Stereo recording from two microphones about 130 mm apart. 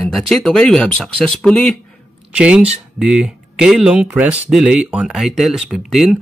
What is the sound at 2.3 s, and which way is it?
Speech, 10° right (ahead or behind).